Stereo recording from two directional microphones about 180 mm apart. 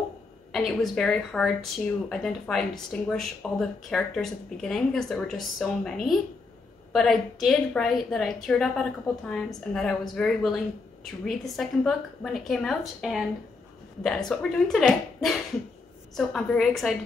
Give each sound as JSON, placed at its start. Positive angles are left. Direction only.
{"t": 0.5, "sound": "a woman's voice", "side_deg": 0}
{"t": 14.3, "sound": "a woman's voice", "side_deg": 5}